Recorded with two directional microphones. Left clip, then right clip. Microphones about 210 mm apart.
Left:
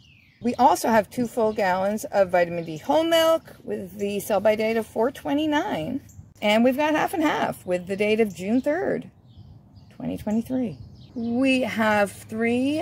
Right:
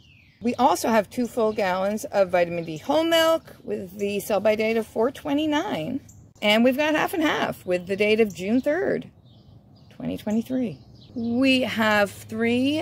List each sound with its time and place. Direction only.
0.4 s speech: centre (ahead or behind)